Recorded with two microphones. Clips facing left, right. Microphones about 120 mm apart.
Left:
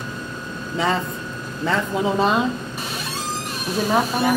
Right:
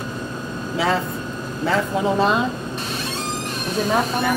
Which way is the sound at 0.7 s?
Centre (ahead or behind).